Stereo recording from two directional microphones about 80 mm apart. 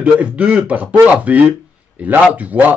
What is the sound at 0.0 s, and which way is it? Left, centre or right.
Speech, centre.